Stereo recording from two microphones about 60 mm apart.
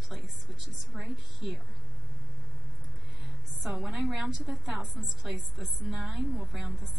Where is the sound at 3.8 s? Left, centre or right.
Centre.